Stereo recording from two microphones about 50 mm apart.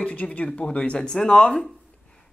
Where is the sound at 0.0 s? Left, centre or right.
Left.